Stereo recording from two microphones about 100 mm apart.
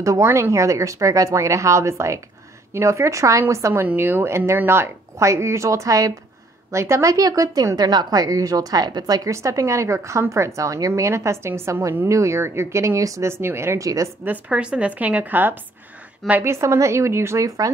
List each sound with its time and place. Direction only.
0.0 s a woman's voice: 30° right (ahead or behind)
14.2 s a woman's voice: 15° right (ahead or behind); by 17.6 s 30° right (ahead or behind)